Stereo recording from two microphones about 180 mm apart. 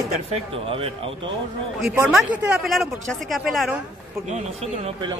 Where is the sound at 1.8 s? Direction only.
Centre (ahead or behind).